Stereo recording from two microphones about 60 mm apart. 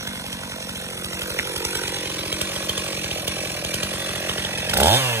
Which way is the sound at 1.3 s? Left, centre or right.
Right.